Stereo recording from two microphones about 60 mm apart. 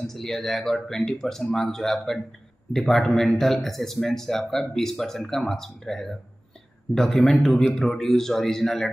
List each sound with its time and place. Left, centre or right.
0.0 s speech: centre
7.0 s speech: centre
7.2 s speech: centre